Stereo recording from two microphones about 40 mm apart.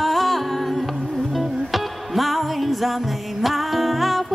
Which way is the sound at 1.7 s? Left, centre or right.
Centre.